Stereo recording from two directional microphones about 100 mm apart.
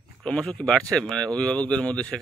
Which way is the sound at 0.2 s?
10° left (ahead or behind).